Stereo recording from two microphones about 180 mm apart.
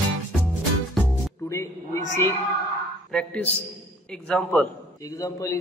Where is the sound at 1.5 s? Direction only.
15° left (ahead or behind).